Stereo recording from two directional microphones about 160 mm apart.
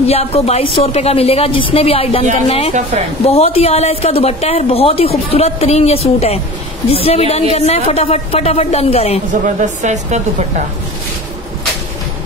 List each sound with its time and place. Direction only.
0.0 s a woman's voice: 40° left (ahead or behind)
2.7 s a woman's voice: 45° right (ahead or behind)
3.3 s a woman's voice: 40° left (ahead or behind)
9.3 s a woman's voice: 50° right (ahead or behind)